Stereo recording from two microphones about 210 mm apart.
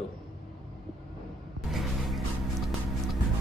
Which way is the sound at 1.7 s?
Centre (ahead or behind).